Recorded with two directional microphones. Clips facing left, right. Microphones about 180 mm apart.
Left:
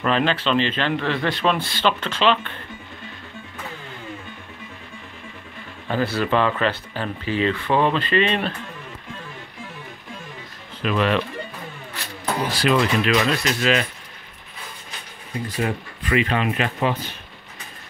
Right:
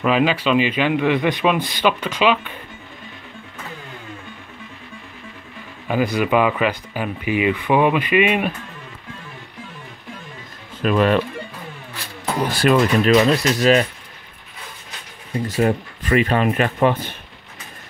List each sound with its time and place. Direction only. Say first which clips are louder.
0.0 s speech: right 3 dB; 5° right (ahead or behind)
5.9 s speech: right 3 dB; 15° right (ahead or behind)
10.8 s speech: right 4 dB; 45° right (ahead or behind)
12.5 s speech: right 4 dB; 45° right (ahead or behind)
15.4 s speech: right 7 dB; 45° right (ahead or behind)